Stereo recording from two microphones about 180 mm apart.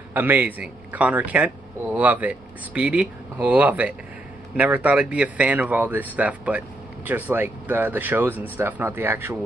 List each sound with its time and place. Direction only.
0.1 s speech: 10° right (ahead or behind)